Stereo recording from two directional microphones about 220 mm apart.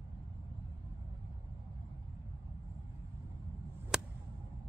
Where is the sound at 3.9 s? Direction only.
Centre (ahead or behind).